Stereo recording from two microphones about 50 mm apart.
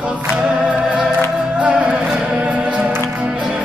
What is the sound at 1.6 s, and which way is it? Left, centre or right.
Music, right.